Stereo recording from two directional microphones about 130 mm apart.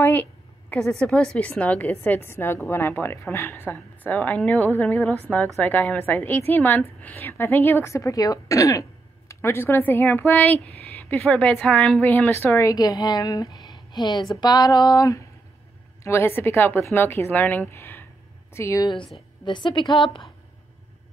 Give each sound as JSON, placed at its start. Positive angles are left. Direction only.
{"t": 0.0, "sound": "a woman's voice", "side_deg": 15}
{"t": 19.4, "sound": "a woman's voice", "side_deg": 35}